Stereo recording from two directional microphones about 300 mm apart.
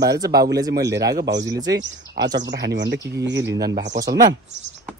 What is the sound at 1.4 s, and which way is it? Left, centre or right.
Speech, centre.